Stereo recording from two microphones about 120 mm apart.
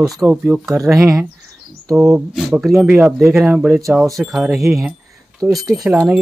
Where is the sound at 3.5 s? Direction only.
15° right (ahead or behind).